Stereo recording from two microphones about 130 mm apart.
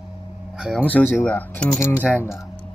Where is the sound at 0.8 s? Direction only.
15° left (ahead or behind).